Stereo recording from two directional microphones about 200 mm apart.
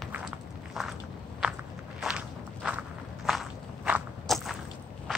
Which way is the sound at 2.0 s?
5° right (ahead or behind).